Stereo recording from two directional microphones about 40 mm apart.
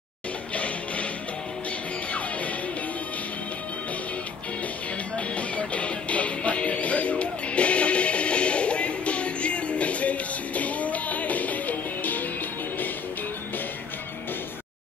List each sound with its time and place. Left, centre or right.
5.1 s music: left